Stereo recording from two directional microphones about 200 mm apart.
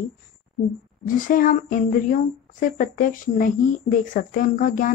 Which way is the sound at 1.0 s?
45° left (ahead or behind).